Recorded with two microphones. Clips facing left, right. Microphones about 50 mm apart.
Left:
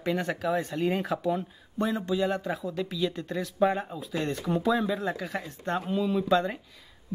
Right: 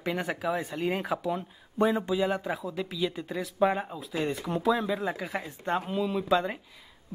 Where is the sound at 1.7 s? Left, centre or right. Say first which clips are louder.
Right 2 dB; centre.